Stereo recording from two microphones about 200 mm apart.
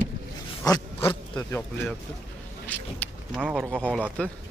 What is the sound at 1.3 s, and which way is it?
Speech, 5° left (ahead or behind).